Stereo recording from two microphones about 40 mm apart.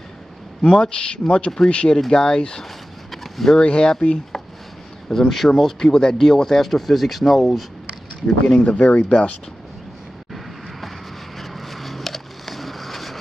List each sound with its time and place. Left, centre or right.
0.6 s speech: left
2.0 s speech: centre
3.1 s a sound: centre
3.5 s speech: left
5.1 s speech: centre
8.6 s speech: left
11.3 s a sound: centre